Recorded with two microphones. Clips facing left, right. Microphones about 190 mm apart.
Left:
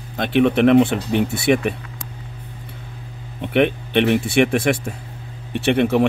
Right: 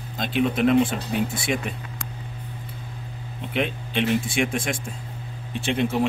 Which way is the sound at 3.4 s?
65° left (ahead or behind).